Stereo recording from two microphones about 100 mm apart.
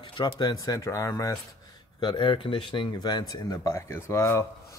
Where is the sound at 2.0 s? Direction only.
50° left (ahead or behind).